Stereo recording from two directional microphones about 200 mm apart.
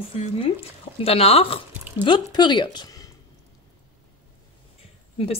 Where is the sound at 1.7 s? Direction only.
10° right (ahead or behind).